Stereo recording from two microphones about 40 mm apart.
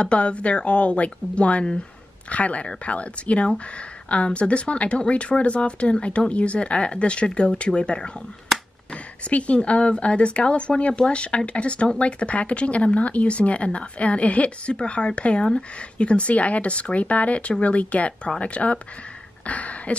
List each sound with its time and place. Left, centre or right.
0.0 s speech: left